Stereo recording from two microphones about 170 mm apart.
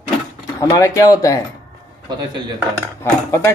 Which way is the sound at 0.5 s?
20° left (ahead or behind).